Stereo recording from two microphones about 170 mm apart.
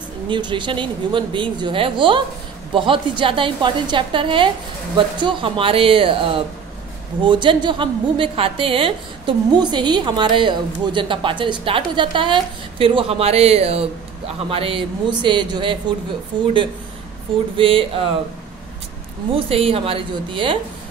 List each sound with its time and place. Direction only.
0.3 s a woman's voice: 30° right (ahead or behind)
17.6 s speech: 30° right (ahead or behind)
19.3 s speech: 35° right (ahead or behind)